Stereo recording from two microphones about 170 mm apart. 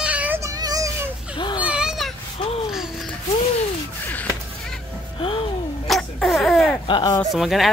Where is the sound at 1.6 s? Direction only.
5° right (ahead or behind).